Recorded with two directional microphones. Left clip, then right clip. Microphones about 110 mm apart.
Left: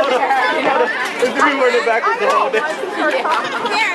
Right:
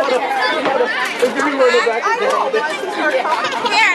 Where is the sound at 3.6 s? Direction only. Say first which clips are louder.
Right 3 dB; 20° right (ahead or behind).